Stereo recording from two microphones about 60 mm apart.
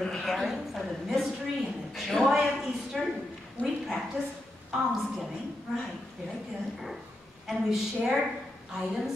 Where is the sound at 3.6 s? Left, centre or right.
Left.